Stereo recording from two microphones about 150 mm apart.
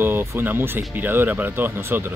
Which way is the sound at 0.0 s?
15° right (ahead or behind).